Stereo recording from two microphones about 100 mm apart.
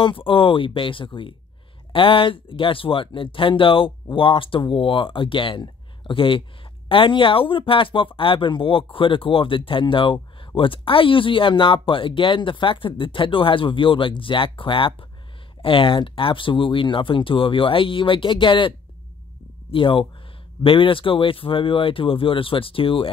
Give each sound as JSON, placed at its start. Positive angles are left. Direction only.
{"t": 0.0, "sound": "speech", "side_deg": 60}
{"t": 19.7, "sound": "speech", "side_deg": 60}